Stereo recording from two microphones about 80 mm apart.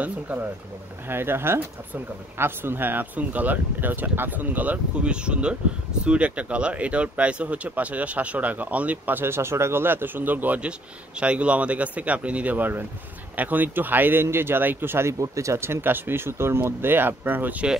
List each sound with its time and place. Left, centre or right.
0.0 s speech: right